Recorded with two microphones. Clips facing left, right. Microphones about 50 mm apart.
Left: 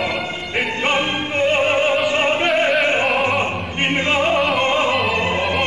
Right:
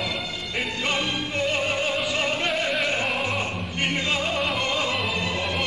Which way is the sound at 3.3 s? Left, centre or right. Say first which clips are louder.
Left 7 dB; left.